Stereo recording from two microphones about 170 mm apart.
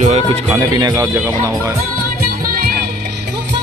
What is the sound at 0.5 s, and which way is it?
Speech, 20° right (ahead or behind).